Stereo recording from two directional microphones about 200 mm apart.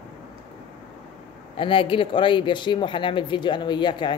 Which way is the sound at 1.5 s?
25° left (ahead or behind).